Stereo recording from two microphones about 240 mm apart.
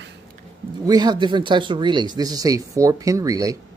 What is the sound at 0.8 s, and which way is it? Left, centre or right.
Speech, centre.